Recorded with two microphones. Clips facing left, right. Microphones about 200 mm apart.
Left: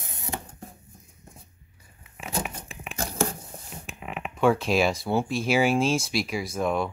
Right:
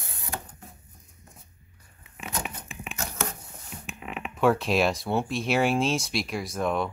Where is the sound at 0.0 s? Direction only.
20° left (ahead or behind).